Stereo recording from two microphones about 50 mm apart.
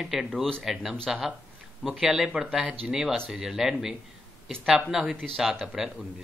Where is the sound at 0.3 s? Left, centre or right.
Centre.